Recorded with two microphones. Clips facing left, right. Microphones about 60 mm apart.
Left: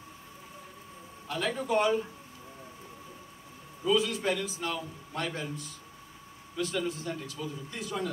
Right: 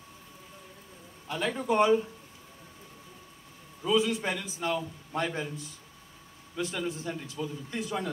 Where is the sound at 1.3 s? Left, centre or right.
Centre.